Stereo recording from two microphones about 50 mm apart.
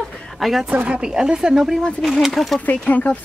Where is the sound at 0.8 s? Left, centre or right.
Right.